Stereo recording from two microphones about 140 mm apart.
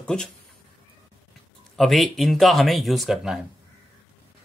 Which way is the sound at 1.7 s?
Centre (ahead or behind).